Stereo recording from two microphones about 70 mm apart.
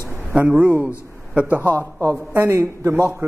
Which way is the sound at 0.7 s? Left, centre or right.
Right.